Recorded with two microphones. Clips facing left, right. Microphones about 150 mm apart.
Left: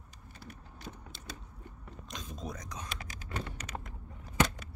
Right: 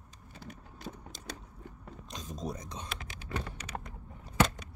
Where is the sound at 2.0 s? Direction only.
35° right (ahead or behind).